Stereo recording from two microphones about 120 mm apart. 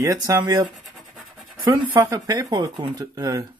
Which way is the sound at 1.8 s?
30° right (ahead or behind).